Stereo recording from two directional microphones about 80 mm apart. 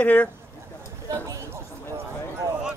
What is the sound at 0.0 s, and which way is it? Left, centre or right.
Speech, centre.